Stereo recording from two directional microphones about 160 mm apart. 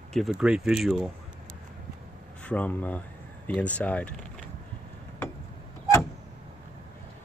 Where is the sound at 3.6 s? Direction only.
10° left (ahead or behind).